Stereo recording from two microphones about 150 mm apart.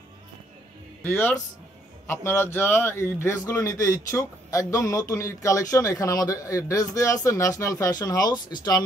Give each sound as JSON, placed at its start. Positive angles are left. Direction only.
{"t": 1.0, "sound": "a man's voice", "side_deg": 15}